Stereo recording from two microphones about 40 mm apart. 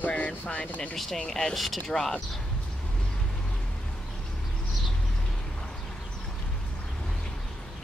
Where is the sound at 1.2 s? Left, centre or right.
Centre.